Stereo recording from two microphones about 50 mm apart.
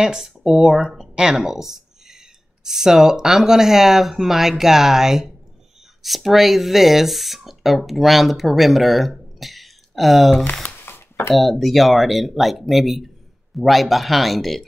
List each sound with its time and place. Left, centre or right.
0.0 s speech: centre
10.9 s a sound: left
11.3 s speech: centre